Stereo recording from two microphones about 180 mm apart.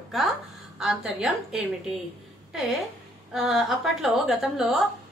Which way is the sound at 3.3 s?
Centre (ahead or behind).